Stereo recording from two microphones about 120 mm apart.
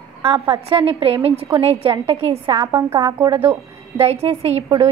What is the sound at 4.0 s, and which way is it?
Speech, 60° right (ahead or behind).